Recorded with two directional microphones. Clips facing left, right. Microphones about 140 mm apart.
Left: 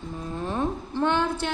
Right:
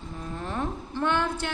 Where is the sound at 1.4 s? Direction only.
20° left (ahead or behind).